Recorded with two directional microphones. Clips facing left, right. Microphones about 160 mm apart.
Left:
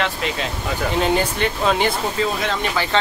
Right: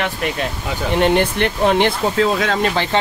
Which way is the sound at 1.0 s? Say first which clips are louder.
Right 5 dB; 65° right (ahead or behind).